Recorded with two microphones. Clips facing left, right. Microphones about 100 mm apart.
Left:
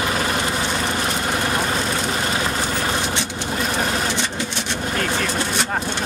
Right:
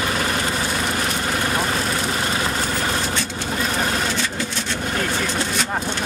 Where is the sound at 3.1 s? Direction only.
20° left (ahead or behind).